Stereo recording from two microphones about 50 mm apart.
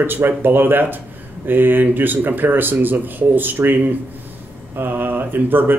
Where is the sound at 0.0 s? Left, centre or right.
Right.